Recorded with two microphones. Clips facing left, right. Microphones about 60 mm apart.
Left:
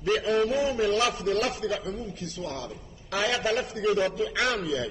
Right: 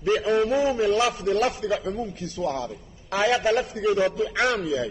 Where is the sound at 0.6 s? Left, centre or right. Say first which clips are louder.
Right 3 dB; right.